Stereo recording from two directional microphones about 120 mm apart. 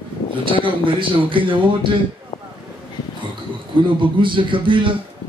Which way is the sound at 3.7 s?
45° right (ahead or behind).